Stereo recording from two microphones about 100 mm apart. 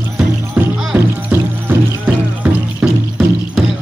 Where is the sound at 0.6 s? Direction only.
10° right (ahead or behind).